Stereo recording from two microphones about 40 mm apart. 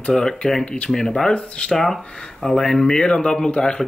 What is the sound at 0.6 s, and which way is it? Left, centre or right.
Speech, left.